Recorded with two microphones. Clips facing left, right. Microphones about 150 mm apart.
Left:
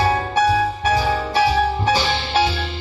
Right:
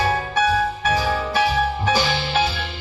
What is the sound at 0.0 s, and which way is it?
Music, 35° left (ahead or behind).